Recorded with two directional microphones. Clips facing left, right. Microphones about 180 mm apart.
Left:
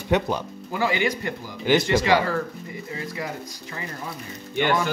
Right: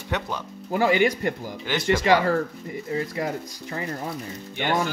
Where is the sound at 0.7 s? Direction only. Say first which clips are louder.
Right 4 dB; 50° right (ahead or behind).